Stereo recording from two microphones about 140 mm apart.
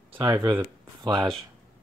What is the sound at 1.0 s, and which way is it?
Speech, 30° right (ahead or behind).